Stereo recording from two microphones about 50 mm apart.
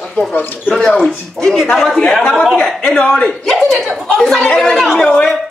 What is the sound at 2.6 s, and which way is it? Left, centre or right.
Speech, centre.